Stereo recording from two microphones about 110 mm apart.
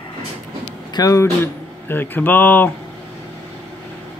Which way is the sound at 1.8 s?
20° left (ahead or behind).